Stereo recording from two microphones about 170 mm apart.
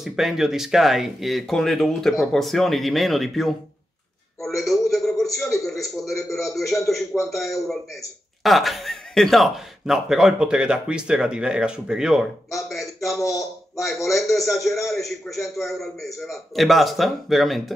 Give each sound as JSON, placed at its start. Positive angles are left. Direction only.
{"t": 0.0, "sound": "a man's voice", "side_deg": 0}
{"t": 12.6, "sound": "a sound", "side_deg": 0}
{"t": 13.2, "sound": "speech", "side_deg": 20}
{"t": 13.7, "sound": "speech", "side_deg": 0}